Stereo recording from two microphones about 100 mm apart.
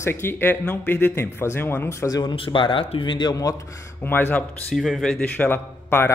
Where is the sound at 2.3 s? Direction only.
60° left (ahead or behind); by 3.5 s 40° left (ahead or behind).